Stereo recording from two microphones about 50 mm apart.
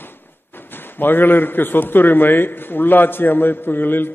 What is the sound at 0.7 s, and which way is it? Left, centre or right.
A man's voice, left.